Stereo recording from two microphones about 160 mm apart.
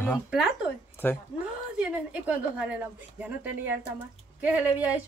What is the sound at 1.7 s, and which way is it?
A woman's voice, 10° right (ahead or behind).